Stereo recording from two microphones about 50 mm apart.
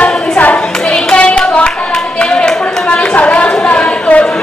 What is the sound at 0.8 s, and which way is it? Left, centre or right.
Clapping, left.